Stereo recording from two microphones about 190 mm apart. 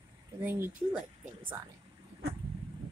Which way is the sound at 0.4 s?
10° right (ahead or behind).